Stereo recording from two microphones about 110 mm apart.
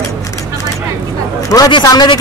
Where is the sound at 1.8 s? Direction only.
40° left (ahead or behind).